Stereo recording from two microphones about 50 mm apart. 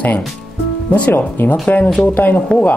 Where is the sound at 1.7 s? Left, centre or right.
Left.